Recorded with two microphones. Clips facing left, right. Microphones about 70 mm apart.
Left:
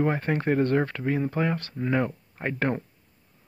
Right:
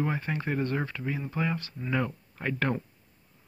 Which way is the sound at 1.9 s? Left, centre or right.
Left.